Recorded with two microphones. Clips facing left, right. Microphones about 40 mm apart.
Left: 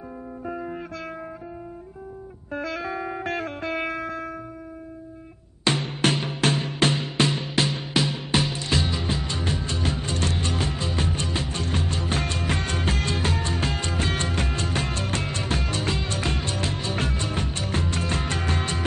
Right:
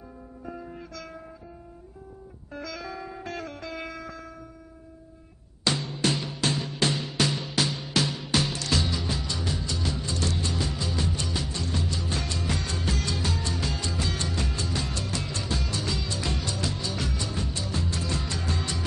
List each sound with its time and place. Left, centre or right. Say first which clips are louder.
0.5 s music: left 7 dB; left
2.5 s music: left 7 dB; left
5.6 s music: left 4 dB; left
8.1 s music: left 2 dB; left